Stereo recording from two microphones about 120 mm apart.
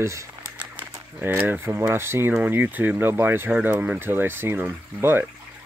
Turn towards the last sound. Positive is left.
turn(degrees=-20)  # may be behind; listen again after turning